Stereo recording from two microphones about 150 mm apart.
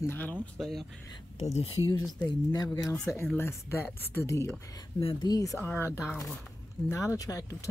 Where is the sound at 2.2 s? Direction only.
25° left (ahead or behind).